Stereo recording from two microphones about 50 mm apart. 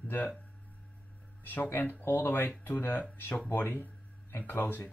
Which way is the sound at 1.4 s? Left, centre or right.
Left.